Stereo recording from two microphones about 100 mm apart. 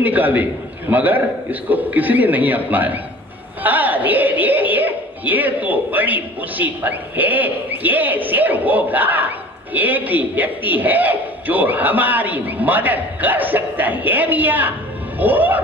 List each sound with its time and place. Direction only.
0.0 s speech: 15° right (ahead or behind)